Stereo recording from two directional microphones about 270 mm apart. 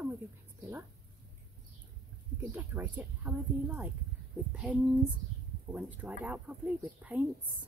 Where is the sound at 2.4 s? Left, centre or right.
Centre.